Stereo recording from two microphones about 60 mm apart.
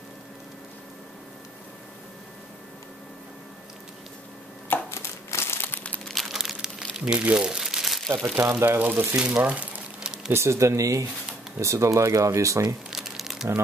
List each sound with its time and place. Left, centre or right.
4.9 s crumpling: left
6.0 s crumpling: centre
7.2 s crumpling: centre
8.4 s speech: right
10.0 s a sound: centre
10.3 s speech: right
12.9 s crumpling: centre